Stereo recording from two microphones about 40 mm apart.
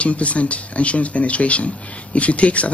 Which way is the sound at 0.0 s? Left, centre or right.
Left.